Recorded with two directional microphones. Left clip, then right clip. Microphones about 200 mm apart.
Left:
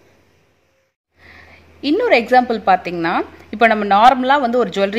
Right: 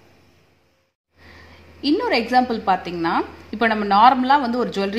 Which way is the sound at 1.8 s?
45° left (ahead or behind).